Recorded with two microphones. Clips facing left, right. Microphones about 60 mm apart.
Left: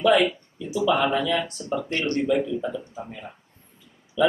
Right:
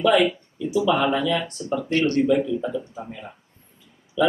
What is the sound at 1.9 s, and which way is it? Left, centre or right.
Speech, left.